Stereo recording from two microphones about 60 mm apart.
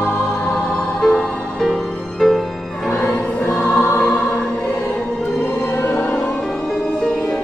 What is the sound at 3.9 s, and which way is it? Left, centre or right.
Music, left.